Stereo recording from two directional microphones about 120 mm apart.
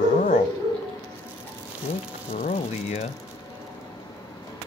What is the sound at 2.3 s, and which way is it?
Speech, 70° left (ahead or behind).